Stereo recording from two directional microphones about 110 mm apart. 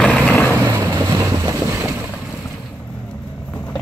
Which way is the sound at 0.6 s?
25° right (ahead or behind).